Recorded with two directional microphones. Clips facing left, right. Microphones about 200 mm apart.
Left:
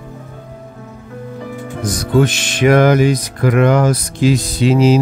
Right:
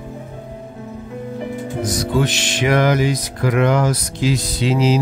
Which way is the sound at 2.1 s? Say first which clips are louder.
Left 8 dB; 50° left (ahead or behind).